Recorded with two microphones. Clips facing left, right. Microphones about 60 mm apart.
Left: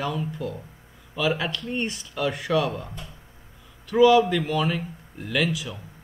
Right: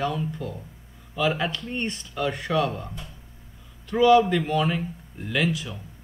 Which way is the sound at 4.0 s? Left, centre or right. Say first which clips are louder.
Left 1 dB; centre.